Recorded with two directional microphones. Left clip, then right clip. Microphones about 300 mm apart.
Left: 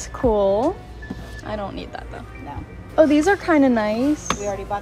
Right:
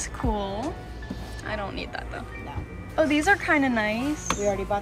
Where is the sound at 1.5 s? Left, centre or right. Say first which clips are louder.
Left 3 dB; centre.